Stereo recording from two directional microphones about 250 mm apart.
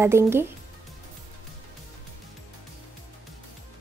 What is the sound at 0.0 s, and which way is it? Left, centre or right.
Speech, centre.